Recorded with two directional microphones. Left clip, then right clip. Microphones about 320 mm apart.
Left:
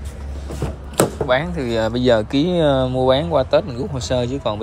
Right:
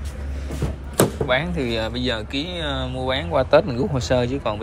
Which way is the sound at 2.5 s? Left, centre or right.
Centre.